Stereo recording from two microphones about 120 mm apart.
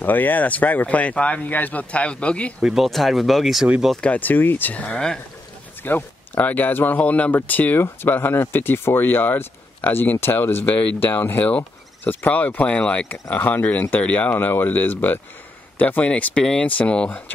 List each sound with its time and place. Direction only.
0.0 s speech: 15° left (ahead or behind)
2.6 s speech: centre (ahead or behind)
3.9 s speech: 10° left (ahead or behind)
5.9 s speech: 15° left (ahead or behind)